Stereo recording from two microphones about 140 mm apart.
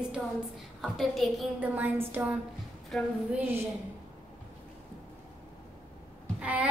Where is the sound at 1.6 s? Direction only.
15° right (ahead or behind).